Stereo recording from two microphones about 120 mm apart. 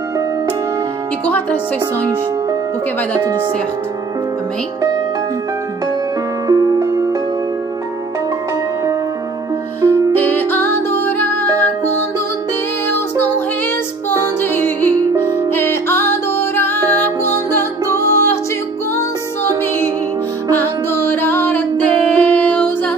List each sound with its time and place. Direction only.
1.2 s speech: 15° left (ahead or behind)
6.4 s music: 30° right (ahead or behind)
9.8 s music: 15° left (ahead or behind)
14.4 s music: 15° left (ahead or behind)
20.5 s music: 20° left (ahead or behind)